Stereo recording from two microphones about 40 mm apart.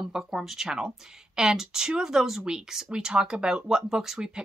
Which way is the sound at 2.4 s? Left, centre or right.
Centre.